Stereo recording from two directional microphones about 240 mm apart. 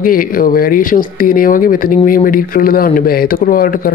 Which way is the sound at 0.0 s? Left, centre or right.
Left.